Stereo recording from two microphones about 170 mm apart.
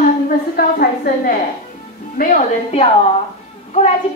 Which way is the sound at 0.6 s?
60° left (ahead or behind).